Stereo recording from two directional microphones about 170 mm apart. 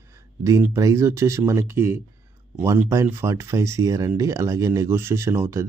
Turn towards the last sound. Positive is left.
turn(degrees=-15)  # may be behind; listen again after turning